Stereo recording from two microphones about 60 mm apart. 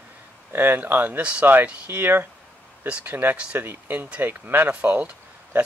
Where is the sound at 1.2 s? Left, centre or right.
Right.